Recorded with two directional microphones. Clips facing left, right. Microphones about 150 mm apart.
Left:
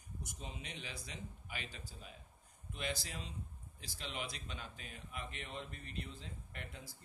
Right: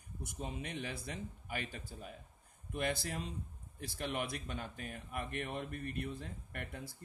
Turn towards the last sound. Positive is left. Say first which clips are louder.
# right 5 dB
turn(degrees=-55)  # may be behind; listen again after turning